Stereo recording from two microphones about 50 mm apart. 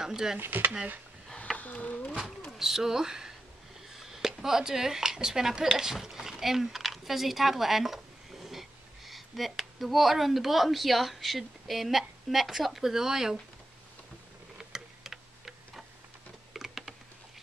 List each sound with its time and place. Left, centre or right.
0.0 s speech: centre
0.4 s speech: right
1.6 s speech: left
2.6 s speech: centre
14.6 s tick-tock: centre
16.5 s typing: centre